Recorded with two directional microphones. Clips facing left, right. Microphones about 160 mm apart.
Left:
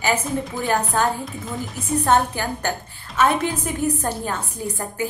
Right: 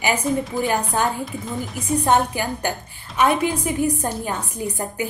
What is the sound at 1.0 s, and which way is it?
A woman's voice, 15° right (ahead or behind).